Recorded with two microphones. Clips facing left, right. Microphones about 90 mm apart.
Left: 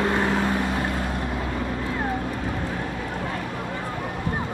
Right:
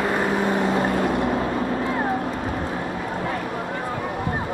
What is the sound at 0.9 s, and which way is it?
Vehicle, 75° right (ahead or behind).